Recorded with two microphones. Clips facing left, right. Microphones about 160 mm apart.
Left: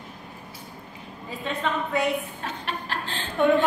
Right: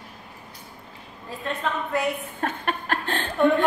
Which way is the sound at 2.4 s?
55° right (ahead or behind).